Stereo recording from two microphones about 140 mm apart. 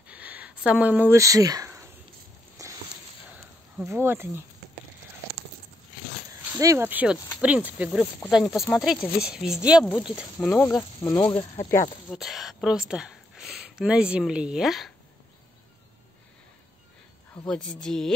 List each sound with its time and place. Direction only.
0.1 s a sound: 10° right (ahead or behind)
3.8 s speech: 15° right (ahead or behind)
6.6 s speech: 20° right (ahead or behind); by 10.8 s 5° left (ahead or behind)
11.0 s speech: 20° left (ahead or behind)
12.1 s speech: centre (ahead or behind)
17.5 s speech: 5° left (ahead or behind)